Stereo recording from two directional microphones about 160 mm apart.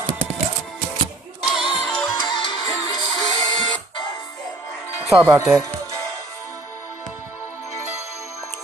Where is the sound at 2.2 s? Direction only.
30° left (ahead or behind).